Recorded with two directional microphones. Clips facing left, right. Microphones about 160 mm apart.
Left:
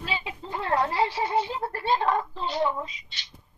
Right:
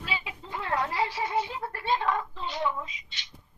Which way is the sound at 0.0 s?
30° left (ahead or behind).